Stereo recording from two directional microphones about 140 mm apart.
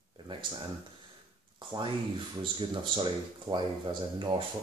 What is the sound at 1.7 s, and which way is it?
Speech, 30° right (ahead or behind).